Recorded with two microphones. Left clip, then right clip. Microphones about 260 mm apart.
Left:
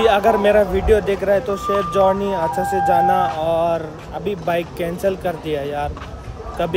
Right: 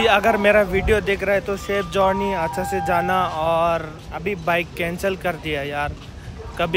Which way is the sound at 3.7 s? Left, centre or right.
Centre.